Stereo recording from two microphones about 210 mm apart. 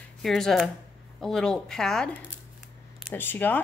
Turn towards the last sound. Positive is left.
turn(degrees=10)  # may be behind; listen again after turning